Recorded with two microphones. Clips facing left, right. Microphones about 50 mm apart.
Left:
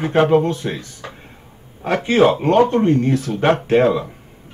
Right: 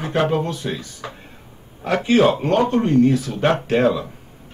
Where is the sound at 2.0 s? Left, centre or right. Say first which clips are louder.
Left 2 dB; left.